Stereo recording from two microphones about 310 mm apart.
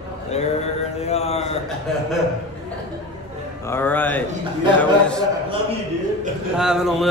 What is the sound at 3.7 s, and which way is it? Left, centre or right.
Mantra, centre.